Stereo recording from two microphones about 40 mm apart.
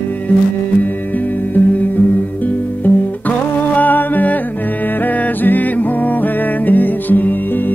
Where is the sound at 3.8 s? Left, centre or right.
Left.